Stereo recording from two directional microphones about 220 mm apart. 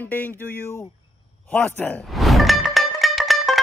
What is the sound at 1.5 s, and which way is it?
Music, 5° left (ahead or behind).